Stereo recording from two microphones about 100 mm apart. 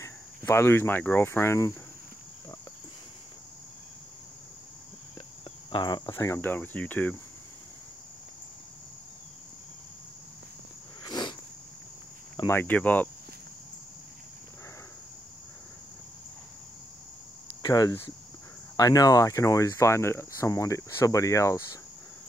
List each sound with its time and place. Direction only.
0.0 s cricket: 30° left (ahead or behind)
5.7 s cricket: 50° left (ahead or behind)
6.4 s speech: 20° left (ahead or behind)
11.1 s a sound: 45° left (ahead or behind)
12.4 s speech: 20° left (ahead or behind)
17.6 s speech: 40° left (ahead or behind)